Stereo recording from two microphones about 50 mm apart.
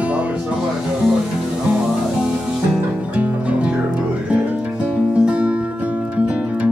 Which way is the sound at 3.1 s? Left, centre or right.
Right.